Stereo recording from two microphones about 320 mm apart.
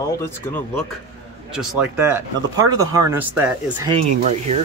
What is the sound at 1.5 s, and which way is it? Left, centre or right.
Speech, centre.